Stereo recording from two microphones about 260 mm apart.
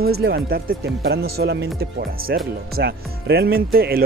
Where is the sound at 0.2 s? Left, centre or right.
Right.